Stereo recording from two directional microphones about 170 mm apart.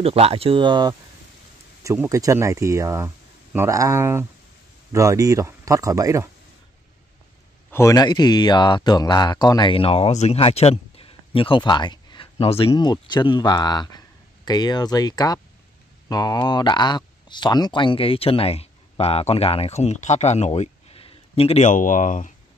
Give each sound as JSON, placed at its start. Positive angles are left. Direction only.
{"t": 0.0, "sound": "speech", "side_deg": -35}
{"t": 7.7, "sound": "speech", "side_deg": 20}